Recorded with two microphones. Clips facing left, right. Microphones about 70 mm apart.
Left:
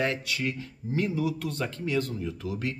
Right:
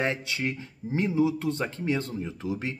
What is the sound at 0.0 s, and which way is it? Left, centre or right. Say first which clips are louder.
Speech: even; right.